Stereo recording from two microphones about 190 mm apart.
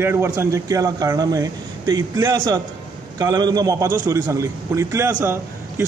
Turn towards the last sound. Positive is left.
turn(degrees=-15)  # may be behind; listen again after turning